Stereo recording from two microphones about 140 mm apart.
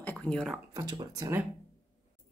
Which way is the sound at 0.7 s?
25° right (ahead or behind).